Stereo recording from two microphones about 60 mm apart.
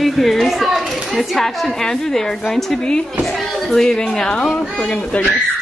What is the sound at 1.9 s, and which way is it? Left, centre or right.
A woman's voice, centre.